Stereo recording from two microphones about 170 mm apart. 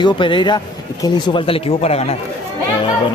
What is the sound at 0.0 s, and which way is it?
A man's voice, 30° left (ahead or behind).